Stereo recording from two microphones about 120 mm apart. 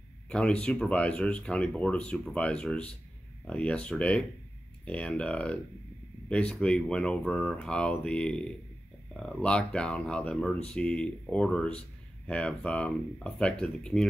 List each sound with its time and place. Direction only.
0.3 s speech: 10° left (ahead or behind)